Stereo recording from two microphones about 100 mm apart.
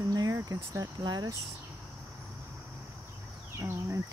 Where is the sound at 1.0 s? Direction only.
45° right (ahead or behind).